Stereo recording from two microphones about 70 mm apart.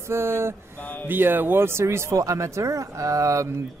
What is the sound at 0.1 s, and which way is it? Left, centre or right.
Mantra, right.